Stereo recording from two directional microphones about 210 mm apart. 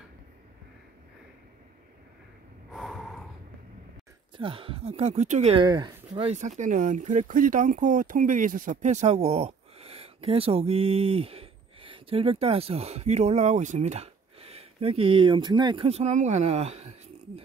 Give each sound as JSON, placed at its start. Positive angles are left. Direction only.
{"t": 2.7, "sound": "snort", "side_deg": -5}
{"t": 4.4, "sound": "speech", "side_deg": -25}